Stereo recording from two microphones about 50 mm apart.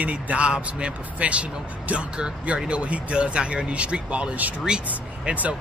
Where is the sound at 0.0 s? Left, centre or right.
Right.